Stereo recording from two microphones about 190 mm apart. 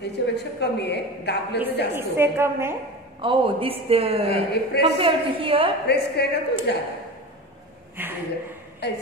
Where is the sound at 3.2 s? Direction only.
25° right (ahead or behind).